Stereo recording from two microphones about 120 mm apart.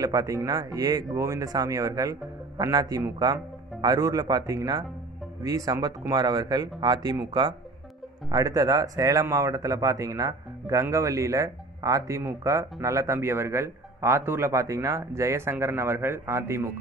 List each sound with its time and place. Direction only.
0.0 s speech: 30° right (ahead or behind)